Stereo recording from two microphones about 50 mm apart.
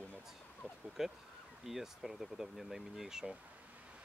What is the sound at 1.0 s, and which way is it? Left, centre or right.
Speech, centre.